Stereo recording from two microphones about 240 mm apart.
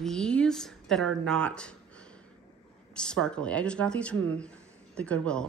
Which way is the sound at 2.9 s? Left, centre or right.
Centre.